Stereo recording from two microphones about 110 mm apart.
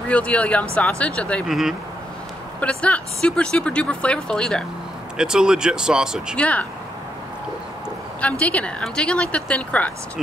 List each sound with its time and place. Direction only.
0.1 s speech: 10° left (ahead or behind)
1.5 s speech: 5° right (ahead or behind)
2.6 s speech: 10° left (ahead or behind)
5.1 s speech: 5° right (ahead or behind)
6.3 s speech: 10° left (ahead or behind)
8.2 s speech: 10° left (ahead or behind)